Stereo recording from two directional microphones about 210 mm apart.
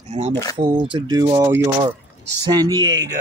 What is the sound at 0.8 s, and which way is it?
Speech, 20° right (ahead or behind).